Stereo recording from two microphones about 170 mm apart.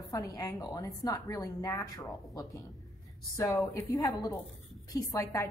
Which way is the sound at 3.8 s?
20° left (ahead or behind).